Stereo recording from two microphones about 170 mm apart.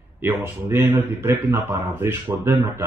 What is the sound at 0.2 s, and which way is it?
Speech, 15° right (ahead or behind).